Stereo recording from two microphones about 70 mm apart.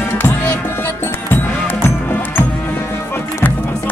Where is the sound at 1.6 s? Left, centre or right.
Left.